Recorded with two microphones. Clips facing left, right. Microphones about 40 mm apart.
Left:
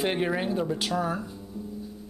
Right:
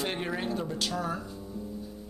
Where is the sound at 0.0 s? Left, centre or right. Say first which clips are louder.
Left 5 dB; centre.